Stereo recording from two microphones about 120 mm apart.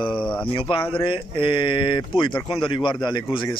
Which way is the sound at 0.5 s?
45° left (ahead or behind).